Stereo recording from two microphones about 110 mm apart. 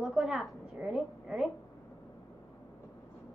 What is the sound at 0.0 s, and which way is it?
A woman's voice, 5° right (ahead or behind).